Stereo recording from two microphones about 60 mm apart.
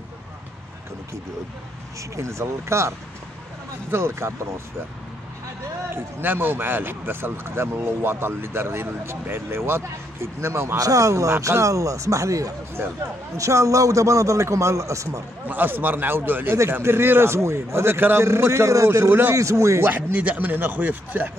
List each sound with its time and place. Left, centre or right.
2.0 s a man's voice: right
3.9 s a man's voice: right
5.9 s speech: right
10.8 s speech: right
12.7 s a man's voice: right
13.4 s speech: right
15.4 s a man's voice: right
19.3 s speech: right
19.8 s speech: right